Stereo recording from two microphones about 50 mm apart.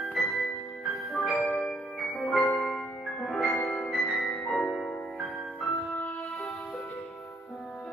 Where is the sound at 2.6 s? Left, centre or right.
Centre.